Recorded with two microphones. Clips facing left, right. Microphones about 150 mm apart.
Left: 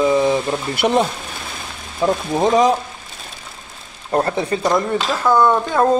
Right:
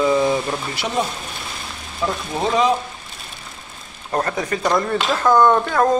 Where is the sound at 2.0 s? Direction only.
20° left (ahead or behind).